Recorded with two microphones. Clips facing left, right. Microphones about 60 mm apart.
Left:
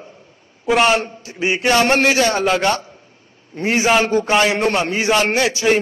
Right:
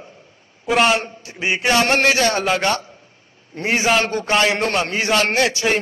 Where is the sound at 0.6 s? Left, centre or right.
Centre.